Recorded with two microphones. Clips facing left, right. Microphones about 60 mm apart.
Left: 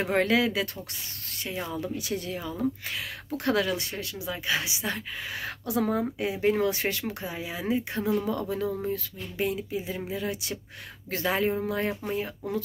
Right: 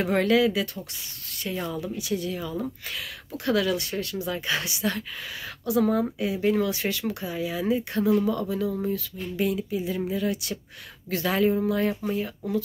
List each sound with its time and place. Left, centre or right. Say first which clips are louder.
0.0 s speech: right 3 dB; left
1.8 s speech: right 2 dB; left
3.9 s speech: right 5 dB; centre
5.4 s speech: right 5 dB; left
7.1 s speech: right 4 dB; left